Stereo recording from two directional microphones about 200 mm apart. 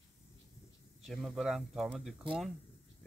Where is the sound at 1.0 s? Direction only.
Centre (ahead or behind).